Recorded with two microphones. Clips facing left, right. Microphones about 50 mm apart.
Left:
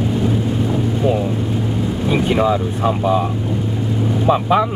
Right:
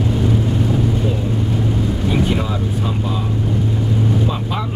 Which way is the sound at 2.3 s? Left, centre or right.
Left.